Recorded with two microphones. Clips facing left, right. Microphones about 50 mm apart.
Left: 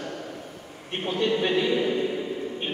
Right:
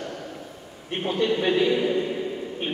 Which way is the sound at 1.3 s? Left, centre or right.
Centre.